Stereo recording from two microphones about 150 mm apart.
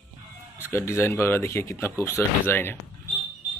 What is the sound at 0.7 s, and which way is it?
Speech, 20° left (ahead or behind).